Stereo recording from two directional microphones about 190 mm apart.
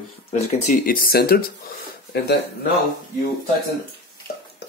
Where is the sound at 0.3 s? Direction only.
40° left (ahead or behind); by 2.7 s 60° left (ahead or behind).